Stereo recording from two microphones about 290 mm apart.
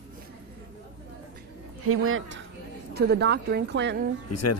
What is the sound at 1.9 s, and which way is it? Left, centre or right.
Speech, right.